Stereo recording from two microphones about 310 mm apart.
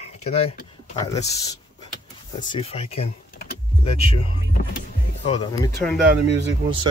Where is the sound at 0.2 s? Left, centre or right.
Centre.